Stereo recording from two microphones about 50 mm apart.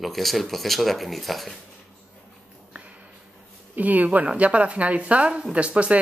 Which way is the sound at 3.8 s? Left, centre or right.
Right.